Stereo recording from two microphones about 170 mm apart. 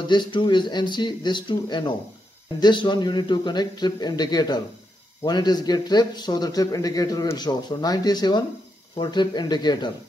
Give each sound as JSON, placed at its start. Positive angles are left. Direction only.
{"t": 0.0, "sound": "a man's voice", "side_deg": 25}